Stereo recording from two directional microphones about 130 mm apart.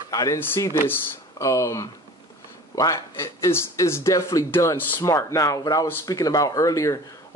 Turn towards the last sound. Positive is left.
turn(degrees=25)  # may be behind; listen again after turning